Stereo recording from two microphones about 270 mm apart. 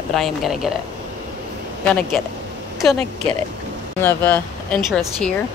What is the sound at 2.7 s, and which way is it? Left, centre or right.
Speech, centre.